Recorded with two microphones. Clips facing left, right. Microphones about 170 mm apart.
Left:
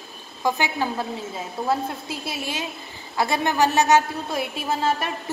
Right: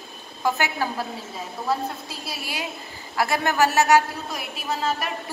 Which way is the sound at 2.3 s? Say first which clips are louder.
Left 1 dB; 20° left (ahead or behind).